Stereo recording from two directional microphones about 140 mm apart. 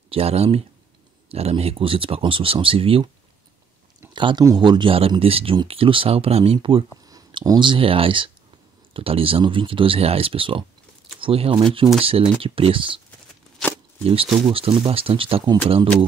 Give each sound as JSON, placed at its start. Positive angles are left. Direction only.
{"t": 0.1, "sound": "speech", "side_deg": -45}
{"t": 4.1, "sound": "speech", "side_deg": -35}
{"t": 7.1, "sound": "speech", "side_deg": -25}
{"t": 14.0, "sound": "speech", "side_deg": -40}